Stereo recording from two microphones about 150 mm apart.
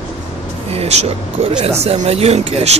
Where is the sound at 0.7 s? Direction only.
45° right (ahead or behind).